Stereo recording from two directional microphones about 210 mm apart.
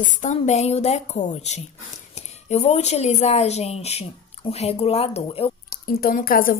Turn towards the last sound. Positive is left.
turn(degrees=40)  # may be behind; listen again after turning